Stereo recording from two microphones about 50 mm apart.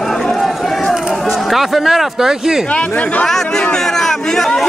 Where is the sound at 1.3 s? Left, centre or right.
Centre.